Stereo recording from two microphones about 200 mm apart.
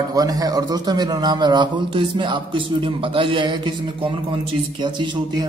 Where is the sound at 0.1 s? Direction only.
20° right (ahead or behind).